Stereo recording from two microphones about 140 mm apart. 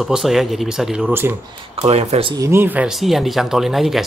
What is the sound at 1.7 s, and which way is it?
Speech, 50° right (ahead or behind).